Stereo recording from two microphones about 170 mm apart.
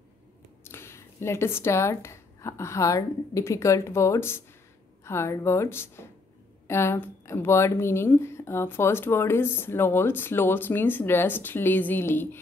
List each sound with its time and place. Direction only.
0.7 s speech: 15° left (ahead or behind)